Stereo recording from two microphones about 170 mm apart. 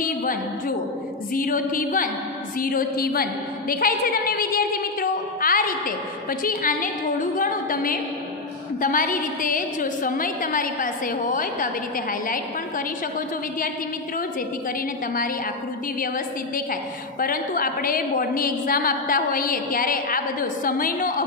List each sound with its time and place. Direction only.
0.0 s a woman's voice: 55° left (ahead or behind)
17.2 s a woman's voice: 60° left (ahead or behind)